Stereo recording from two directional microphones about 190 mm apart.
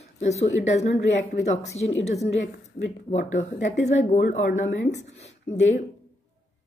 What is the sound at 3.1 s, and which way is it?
Speech, 40° left (ahead or behind).